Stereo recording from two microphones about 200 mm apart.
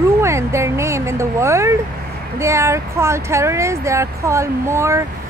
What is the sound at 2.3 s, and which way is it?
Speech, 15° right (ahead or behind).